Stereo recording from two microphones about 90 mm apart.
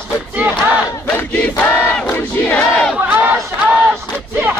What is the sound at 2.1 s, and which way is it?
Battle cry, 15° left (ahead or behind).